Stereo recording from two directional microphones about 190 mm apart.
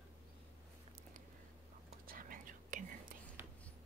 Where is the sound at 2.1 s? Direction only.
45° right (ahead or behind).